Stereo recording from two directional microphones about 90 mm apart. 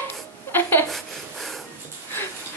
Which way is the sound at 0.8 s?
5° left (ahead or behind).